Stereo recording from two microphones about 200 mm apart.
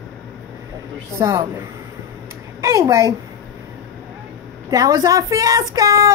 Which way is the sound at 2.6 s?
15° right (ahead or behind).